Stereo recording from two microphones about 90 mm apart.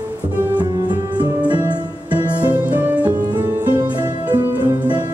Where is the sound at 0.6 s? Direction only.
50° right (ahead or behind).